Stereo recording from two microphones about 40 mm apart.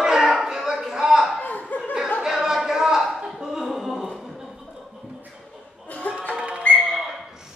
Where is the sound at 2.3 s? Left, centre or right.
Centre.